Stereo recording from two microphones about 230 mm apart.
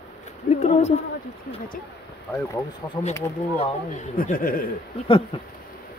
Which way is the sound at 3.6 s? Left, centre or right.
Left.